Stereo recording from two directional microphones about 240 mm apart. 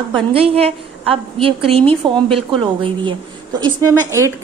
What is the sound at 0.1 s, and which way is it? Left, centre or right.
A woman's voice, right.